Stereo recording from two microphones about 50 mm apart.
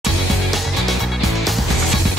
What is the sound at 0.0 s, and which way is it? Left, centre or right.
Music, centre.